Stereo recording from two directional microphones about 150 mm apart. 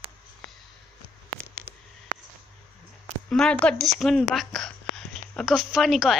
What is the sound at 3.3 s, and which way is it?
Speech, 5° left (ahead or behind).